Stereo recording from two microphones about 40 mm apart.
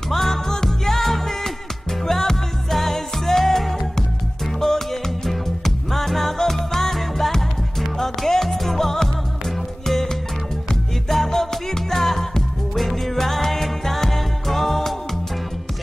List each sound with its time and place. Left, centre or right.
0.1 s music: centre